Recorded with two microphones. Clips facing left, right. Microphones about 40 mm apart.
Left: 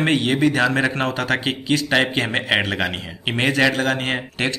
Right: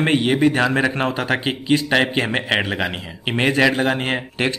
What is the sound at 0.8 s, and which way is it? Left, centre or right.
Speech, centre.